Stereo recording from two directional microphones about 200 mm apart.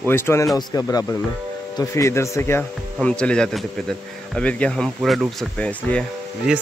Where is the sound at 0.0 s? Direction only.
10° left (ahead or behind).